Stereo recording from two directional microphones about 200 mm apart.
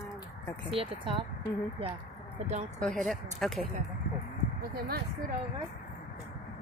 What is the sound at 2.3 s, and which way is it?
Speech, 35° right (ahead or behind).